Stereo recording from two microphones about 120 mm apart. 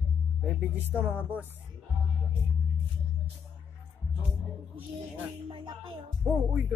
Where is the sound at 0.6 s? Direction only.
15° right (ahead or behind).